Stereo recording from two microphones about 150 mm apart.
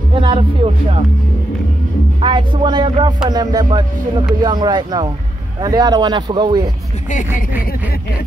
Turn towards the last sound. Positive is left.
turn(degrees=55)  # may be behind; listen again after turning